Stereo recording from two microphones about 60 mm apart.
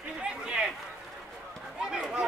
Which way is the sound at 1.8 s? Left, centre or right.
Centre.